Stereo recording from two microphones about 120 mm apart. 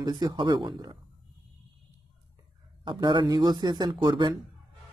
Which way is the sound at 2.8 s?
40° right (ahead or behind).